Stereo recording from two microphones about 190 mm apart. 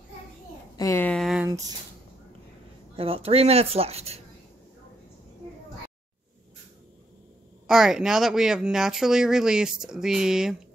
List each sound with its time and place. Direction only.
0.7 s a sound: 15° left (ahead or behind); by 1.5 s centre (ahead or behind)
1.5 s speech: 20° right (ahead or behind)
3.0 s speech: 30° right (ahead or behind)
7.6 s speech: 5° right (ahead or behind)